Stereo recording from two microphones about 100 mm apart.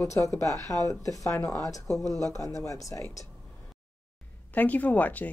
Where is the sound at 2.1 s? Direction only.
35° right (ahead or behind).